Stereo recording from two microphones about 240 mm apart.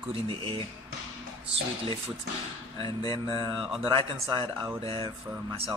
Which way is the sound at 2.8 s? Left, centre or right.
Right.